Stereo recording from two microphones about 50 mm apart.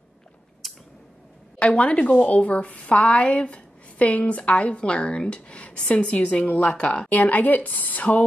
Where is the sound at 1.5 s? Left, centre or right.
Left.